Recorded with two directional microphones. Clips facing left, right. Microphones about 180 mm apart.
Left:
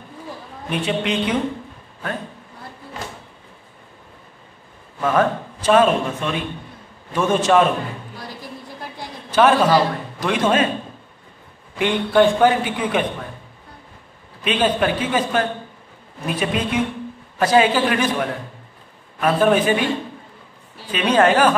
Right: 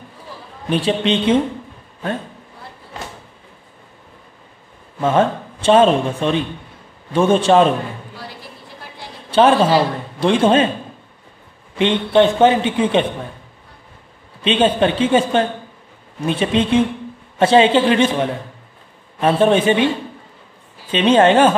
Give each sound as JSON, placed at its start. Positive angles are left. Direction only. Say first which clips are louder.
{"t": 0.7, "sound": "a man's voice", "louder": "right 5 dB", "side_deg": -30}
{"t": 5.0, "sound": "a man's voice", "louder": "right 2 dB", "side_deg": -25}
{"t": 9.3, "sound": "a man's voice", "louder": "right 2 dB", "side_deg": -30}
{"t": 11.8, "sound": "a man's voice", "louder": "right 2 dB", "side_deg": -20}
{"t": 14.4, "sound": "a man's voice", "louder": "right 4 dB", "side_deg": -25}
{"t": 20.9, "sound": "a man's voice", "louder": "right 4 dB", "side_deg": -25}